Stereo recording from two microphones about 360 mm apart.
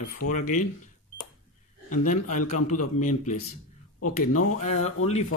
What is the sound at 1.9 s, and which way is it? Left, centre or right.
Speech, left.